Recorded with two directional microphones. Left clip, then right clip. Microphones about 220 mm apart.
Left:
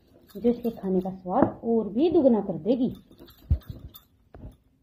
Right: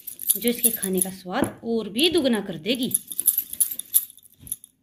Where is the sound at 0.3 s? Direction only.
15° right (ahead or behind).